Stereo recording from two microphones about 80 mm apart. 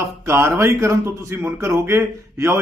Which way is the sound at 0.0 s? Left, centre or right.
Right.